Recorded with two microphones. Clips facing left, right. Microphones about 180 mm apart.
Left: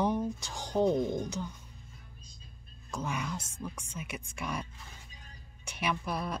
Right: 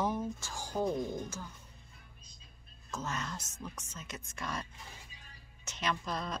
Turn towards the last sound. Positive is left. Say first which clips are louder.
# left 2 dB
turn(degrees=10)  # may be behind; listen again after turning